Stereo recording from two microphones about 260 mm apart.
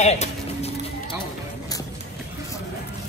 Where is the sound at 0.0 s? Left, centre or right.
Left.